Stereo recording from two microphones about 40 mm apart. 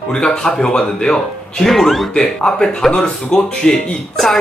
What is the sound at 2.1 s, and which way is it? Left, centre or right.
Speech, centre.